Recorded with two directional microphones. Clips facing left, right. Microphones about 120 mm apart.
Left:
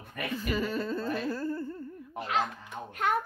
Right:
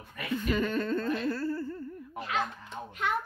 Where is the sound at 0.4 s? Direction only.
5° left (ahead or behind).